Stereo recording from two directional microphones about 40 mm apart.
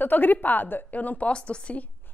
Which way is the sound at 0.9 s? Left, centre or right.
Left.